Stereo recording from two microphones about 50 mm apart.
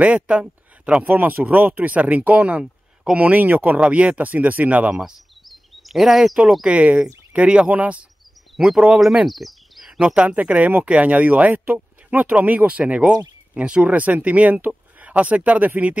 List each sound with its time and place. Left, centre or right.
0.0 s speech: right
1.1 s speech: right
2.6 s a sound: centre
3.2 s speech: right
3.8 s speech: right
5.4 s a sound: centre
6.6 s speech: right
8.5 s speech: centre
9.2 s a sound: centre
9.9 s speech: right